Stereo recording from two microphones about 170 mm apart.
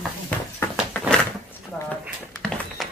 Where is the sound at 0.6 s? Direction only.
15° left (ahead or behind).